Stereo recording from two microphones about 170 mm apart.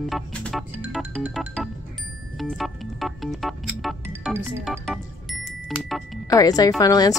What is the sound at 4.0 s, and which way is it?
Music, 15° right (ahead or behind).